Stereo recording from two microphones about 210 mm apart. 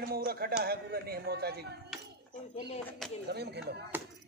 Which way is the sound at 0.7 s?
45° right (ahead or behind).